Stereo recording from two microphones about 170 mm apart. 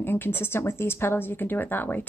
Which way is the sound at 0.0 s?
15° left (ahead or behind).